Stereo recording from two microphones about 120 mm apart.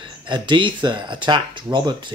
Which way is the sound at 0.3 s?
40° right (ahead or behind).